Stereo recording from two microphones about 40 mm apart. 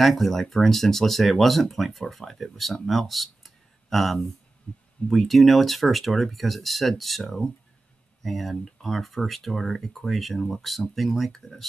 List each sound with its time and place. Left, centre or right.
0.0 s speech: centre
5.0 s speech: left
5.3 s speech: centre
7.2 s speech: centre